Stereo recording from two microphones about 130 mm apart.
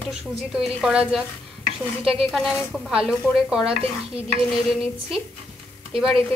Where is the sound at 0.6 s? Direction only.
5° right (ahead or behind).